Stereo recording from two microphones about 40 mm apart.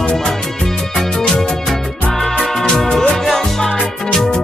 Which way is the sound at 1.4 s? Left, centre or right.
Left.